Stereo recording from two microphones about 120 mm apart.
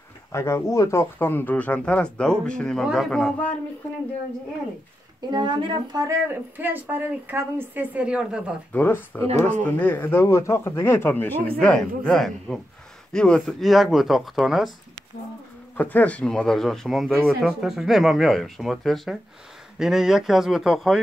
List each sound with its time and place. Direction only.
0.3 s speech: 20° left (ahead or behind)
5.3 s speech: 40° right (ahead or behind)
6.2 s speech: 15° right (ahead or behind)
8.7 s speech: 15° left (ahead or behind)
9.3 s speech: 80° right
9.7 s speech: 15° left (ahead or behind)
15.8 s speech: 15° left (ahead or behind); by 21.0 s centre (ahead or behind)